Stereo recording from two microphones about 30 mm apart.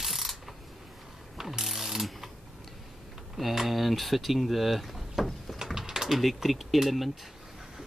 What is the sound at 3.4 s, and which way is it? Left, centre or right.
Pulleys, centre.